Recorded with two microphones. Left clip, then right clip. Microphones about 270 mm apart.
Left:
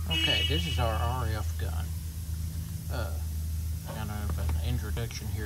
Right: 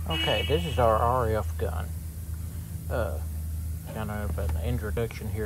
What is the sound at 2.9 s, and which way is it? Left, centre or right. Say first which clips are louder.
Speech: right 9 dB; centre.